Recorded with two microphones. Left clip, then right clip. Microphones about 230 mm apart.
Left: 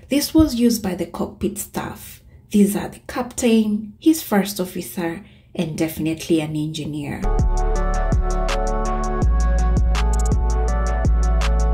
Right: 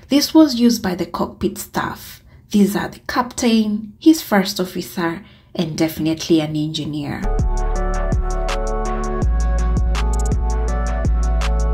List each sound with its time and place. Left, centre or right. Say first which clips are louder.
0.1 s a woman's voice: right 4 dB; centre
6.5 s a woman's voice: right 3 dB; centre
7.1 s music: right 1 dB; centre